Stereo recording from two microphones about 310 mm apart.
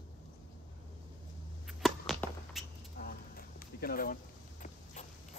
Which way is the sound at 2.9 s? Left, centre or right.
Left.